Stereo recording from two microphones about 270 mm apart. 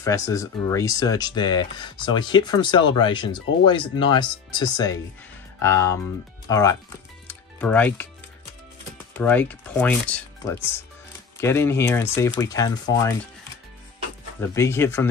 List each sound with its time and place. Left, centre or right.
0.0 s speech: centre
7.2 s music: centre
9.1 s speech: centre
14.4 s speech: centre